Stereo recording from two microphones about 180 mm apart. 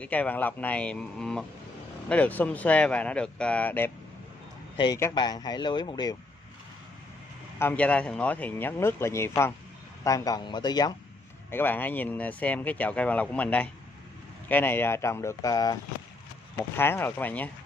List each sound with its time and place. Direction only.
0.0 s speech: 10° left (ahead or behind)
4.7 s speech: 20° left (ahead or behind)
7.5 s speech: 10° left (ahead or behind)
11.5 s speech: 10° left (ahead or behind)